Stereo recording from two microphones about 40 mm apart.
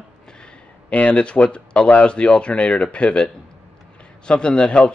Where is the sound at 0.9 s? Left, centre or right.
Left.